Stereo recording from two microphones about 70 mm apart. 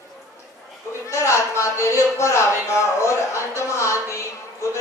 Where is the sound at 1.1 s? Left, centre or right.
Left.